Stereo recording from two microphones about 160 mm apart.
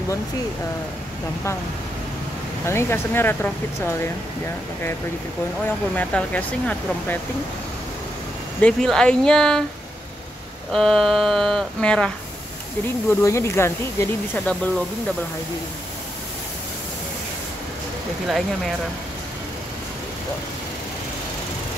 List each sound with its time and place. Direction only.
2.6 s speech: 15° left (ahead or behind)
5.9 s speech: 10° left (ahead or behind)
8.5 s speech: 5° left (ahead or behind)
10.7 s speech: centre (ahead or behind)
12.8 s speech: 15° left (ahead or behind)